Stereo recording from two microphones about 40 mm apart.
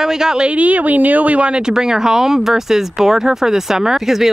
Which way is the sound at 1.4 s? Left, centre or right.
Right.